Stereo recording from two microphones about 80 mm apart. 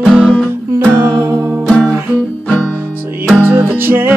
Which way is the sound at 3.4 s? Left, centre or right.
Right.